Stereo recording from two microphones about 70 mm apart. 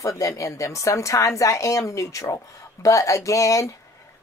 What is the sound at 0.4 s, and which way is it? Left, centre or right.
Speech, left.